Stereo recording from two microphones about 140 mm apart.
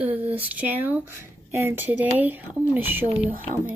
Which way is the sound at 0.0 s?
10° right (ahead or behind).